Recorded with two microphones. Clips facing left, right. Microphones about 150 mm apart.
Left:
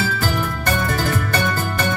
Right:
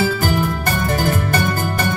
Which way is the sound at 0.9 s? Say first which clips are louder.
Right 3 dB; 40° right (ahead or behind).